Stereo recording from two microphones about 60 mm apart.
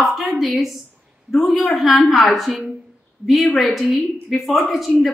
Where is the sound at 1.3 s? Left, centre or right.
Centre.